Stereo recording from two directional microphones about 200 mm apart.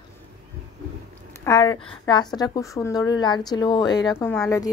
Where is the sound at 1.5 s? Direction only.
20° left (ahead or behind).